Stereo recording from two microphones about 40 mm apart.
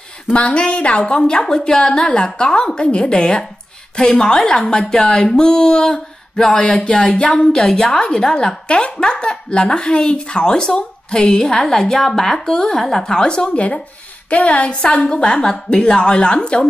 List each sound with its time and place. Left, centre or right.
0.3 s a woman's voice: left